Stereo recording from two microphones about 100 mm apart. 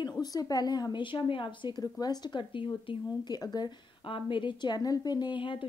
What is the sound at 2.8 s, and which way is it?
Speech, 45° left (ahead or behind).